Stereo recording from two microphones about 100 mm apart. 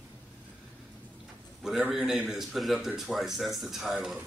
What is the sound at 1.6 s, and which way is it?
A man's voice, 5° right (ahead or behind).